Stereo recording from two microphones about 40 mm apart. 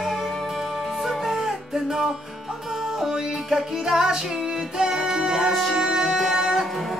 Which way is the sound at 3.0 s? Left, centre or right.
Centre.